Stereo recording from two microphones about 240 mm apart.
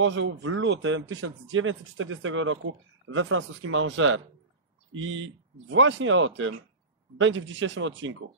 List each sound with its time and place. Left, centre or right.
0.0 s speech: right